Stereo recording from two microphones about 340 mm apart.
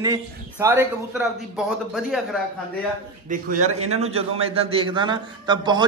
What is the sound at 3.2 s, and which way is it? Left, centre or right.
A man's voice, right.